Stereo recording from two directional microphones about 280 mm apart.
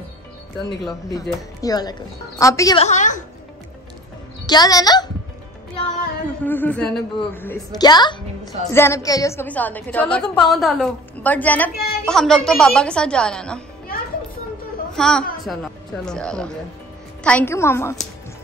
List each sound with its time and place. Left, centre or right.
1.1 s a woman's voice: centre
4.5 s a woman's voice: centre
6.4 s a woman's voice: centre
11.7 s speech: left
12.1 s a woman's voice: centre
15.0 s a woman's voice: centre